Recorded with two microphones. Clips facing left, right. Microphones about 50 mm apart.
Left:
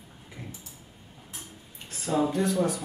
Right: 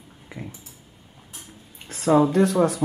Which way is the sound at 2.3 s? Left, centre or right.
Right.